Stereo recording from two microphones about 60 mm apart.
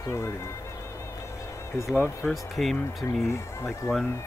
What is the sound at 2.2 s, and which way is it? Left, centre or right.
Speech, centre.